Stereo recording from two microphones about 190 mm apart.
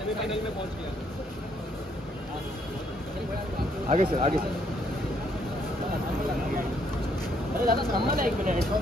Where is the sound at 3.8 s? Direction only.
40° right (ahead or behind).